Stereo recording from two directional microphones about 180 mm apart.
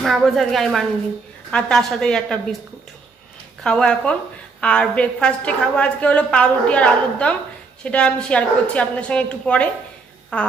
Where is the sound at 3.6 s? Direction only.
5° left (ahead or behind).